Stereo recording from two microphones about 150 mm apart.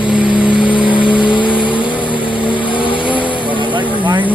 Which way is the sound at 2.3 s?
35° left (ahead or behind).